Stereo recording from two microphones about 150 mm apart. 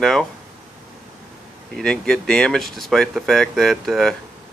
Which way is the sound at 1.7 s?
5° left (ahead or behind).